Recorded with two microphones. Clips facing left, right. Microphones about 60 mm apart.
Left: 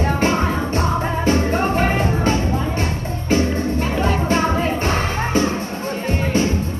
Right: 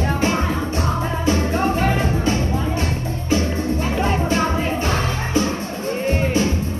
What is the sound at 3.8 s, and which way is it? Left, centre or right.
Music, centre.